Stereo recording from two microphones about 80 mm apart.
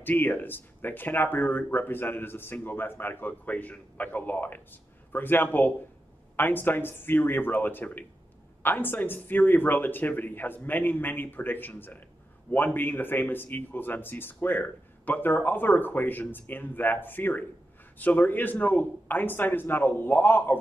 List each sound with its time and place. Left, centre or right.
0.0 s speech: left